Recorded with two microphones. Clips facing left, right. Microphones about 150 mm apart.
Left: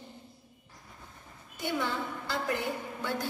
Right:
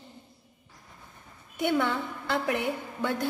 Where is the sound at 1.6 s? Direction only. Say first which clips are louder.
Right 6 dB; 60° right (ahead or behind).